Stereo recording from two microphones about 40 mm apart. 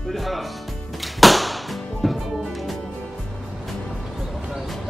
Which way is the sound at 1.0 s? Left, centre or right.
Centre.